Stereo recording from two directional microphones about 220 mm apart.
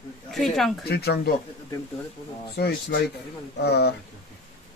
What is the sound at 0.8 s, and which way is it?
Speech, 45° left (ahead or behind).